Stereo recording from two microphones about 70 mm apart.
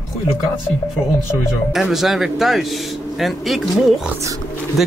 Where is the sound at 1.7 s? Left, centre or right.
Centre.